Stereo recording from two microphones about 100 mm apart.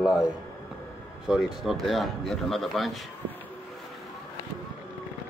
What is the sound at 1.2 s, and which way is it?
Speech, 5° right (ahead or behind).